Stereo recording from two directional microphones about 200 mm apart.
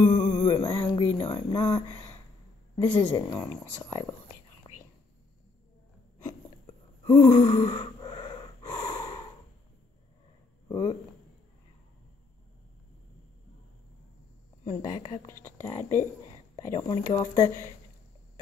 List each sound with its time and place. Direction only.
0.0 s music: 30° left (ahead or behind)
1.1 s a sound: 30° left (ahead or behind)
1.5 s speech: 15° left (ahead or behind)
7.1 s gasp: 15° left (ahead or behind)
10.7 s speech: 20° left (ahead or behind)
14.6 s a woman's voice: 20° left (ahead or behind)